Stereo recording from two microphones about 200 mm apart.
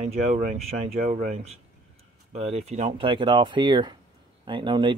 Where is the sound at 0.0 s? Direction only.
40° right (ahead or behind).